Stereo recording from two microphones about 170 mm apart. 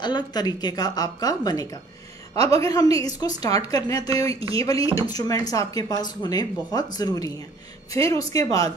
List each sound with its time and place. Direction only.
0.0 s speech: 25° left (ahead or behind)
2.3 s a woman's voice: 35° right (ahead or behind)
2.6 s speech: 20° left (ahead or behind)